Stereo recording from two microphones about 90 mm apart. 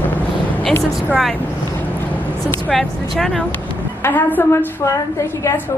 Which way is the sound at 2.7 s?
5° left (ahead or behind).